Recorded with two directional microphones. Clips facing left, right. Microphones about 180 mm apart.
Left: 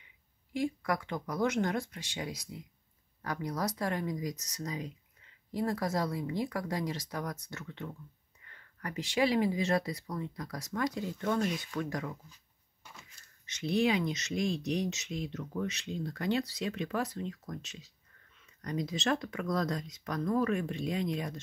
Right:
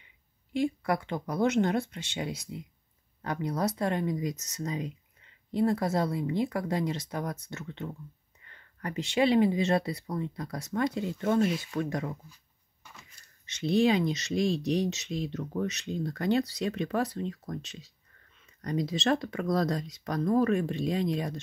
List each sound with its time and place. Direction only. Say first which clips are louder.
0.5 s speech: right 4 dB; 30° right (ahead or behind)
13.5 s speech: right 4 dB; 30° right (ahead or behind)